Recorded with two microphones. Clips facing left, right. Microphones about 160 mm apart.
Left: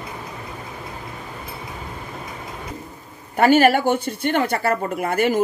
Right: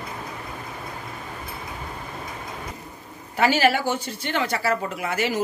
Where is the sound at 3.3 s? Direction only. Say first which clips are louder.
Left 6 dB; 50° left (ahead or behind).